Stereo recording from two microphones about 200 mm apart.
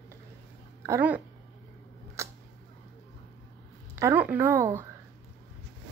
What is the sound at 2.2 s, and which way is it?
Camera, 15° right (ahead or behind).